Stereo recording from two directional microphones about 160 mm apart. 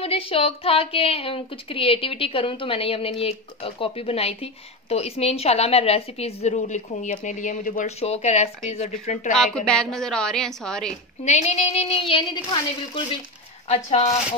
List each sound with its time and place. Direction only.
0.0 s a woman's voice: 35° left (ahead or behind); by 7.9 s 55° left (ahead or behind)
8.0 s speech: 40° left (ahead or behind)
9.4 s a woman's voice: 5° left (ahead or behind)
11.2 s a woman's voice: 45° left (ahead or behind)
13.7 s speech: 45° left (ahead or behind)